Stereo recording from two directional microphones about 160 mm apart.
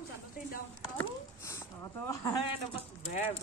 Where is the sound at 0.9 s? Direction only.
15° left (ahead or behind).